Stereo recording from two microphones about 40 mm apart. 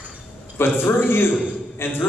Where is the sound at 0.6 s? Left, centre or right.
Left.